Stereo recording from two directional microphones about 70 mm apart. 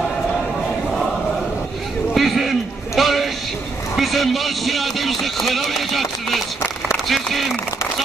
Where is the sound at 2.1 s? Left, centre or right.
Centre.